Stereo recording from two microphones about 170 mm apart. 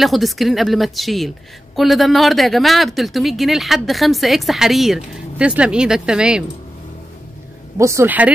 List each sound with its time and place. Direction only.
0.0 s speech: centre (ahead or behind)
7.7 s speech: 15° right (ahead or behind)